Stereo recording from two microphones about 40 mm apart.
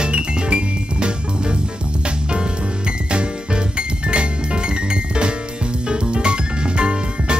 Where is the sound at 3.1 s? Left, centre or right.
Right.